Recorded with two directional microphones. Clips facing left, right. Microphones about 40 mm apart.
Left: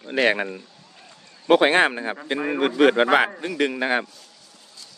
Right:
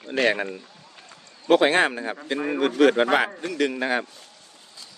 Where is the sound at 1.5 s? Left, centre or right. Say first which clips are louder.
Left 2 dB; left.